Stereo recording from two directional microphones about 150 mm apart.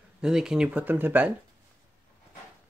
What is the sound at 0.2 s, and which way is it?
Speech, 5° right (ahead or behind).